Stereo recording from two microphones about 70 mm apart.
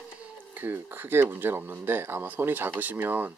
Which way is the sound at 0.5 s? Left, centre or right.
Right.